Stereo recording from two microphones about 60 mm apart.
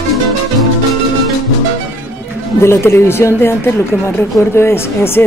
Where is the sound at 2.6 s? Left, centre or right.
Left.